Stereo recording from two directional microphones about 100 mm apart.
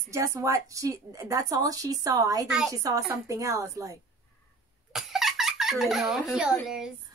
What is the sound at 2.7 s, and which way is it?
A woman's voice, 35° right (ahead or behind).